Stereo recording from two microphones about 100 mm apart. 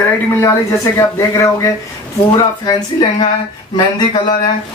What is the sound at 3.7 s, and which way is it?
Speech, 50° left (ahead or behind).